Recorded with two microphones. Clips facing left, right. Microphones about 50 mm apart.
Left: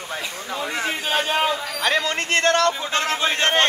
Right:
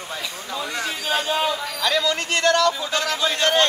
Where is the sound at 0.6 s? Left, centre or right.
Left.